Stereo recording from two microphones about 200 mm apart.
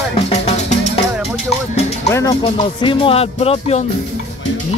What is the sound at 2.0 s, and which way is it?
Music, 15° left (ahead or behind).